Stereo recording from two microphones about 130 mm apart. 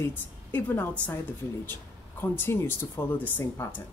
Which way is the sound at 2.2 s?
15° left (ahead or behind).